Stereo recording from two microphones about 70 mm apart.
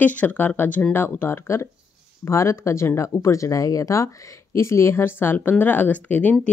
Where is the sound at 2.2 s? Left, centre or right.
Left.